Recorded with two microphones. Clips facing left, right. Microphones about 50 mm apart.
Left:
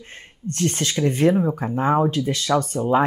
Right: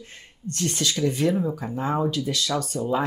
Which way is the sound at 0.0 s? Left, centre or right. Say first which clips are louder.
Left 4 dB; left.